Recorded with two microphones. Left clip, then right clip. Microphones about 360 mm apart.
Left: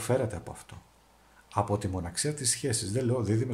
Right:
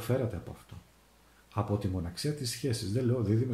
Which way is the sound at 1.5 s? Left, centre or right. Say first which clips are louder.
Left 5 dB; centre.